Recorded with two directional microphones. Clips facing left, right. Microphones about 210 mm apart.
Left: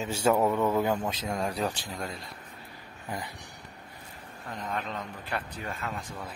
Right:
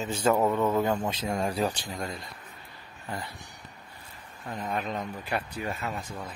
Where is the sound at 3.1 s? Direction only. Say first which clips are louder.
Even; 15° left (ahead or behind).